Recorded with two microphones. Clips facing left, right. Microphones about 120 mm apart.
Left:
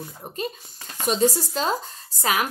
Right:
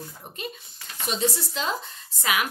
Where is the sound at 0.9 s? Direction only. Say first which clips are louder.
Left 6 dB; 40° left (ahead or behind).